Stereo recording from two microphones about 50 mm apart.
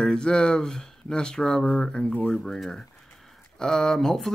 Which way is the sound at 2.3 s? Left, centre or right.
Centre.